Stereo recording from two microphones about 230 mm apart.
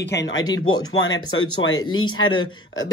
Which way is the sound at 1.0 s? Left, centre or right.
Left.